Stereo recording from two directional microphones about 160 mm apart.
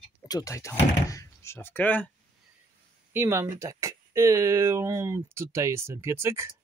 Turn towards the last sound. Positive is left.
turn(degrees=-15)  # may be behind; listen again after turning